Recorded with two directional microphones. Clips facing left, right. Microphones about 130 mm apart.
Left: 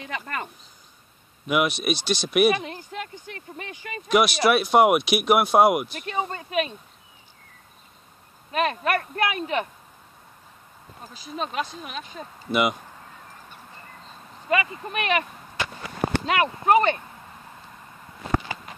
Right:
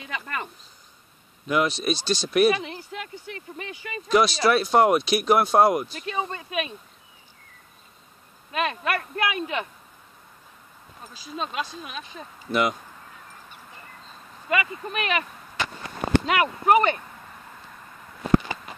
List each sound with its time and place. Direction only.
0.0 s speech: 35° left (ahead or behind)
1.5 s speech: 15° left (ahead or behind)
2.5 s speech: 35° left (ahead or behind)
4.1 s speech: 15° left (ahead or behind)
6.0 s speech: 35° left (ahead or behind)
8.5 s speech: 35° left (ahead or behind)
11.3 s speech: 40° left (ahead or behind)
12.4 s speech: 15° left (ahead or behind)
14.5 s speech: 30° left (ahead or behind)